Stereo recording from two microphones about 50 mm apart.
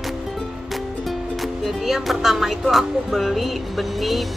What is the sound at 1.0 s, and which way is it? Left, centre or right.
Music, centre.